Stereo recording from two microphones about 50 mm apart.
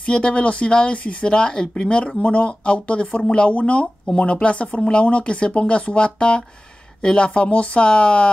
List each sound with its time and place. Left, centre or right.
0.0 s speech: left